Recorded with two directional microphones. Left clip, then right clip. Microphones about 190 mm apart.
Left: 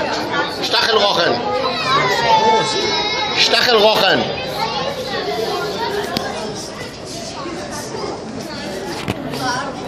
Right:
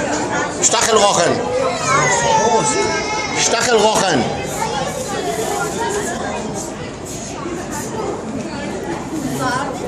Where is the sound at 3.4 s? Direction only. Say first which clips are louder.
Left 2 dB; centre (ahead or behind).